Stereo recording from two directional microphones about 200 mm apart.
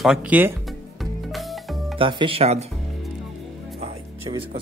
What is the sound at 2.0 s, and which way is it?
Speech, 25° right (ahead or behind).